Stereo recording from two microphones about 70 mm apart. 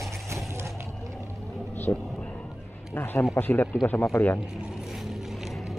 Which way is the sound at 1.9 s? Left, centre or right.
Left.